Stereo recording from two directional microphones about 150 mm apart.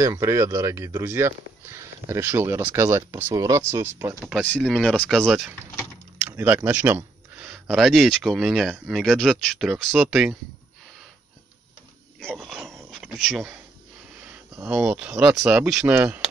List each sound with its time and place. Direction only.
0.0 s speech: 20° right (ahead or behind)
4.2 s speech: 5° left (ahead or behind)
6.2 s speech: 10° right (ahead or behind)
12.3 s dog: 5° right (ahead or behind)
12.9 s speech: 5° right (ahead or behind)
14.3 s a sound: 20° right (ahead or behind)
14.7 s speech: 5° right (ahead or behind)